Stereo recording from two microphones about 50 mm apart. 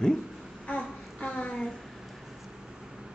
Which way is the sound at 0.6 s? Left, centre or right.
Left.